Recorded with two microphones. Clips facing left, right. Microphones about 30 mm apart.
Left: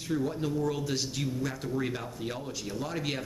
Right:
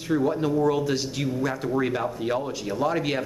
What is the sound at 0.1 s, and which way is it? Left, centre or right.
Speech, right.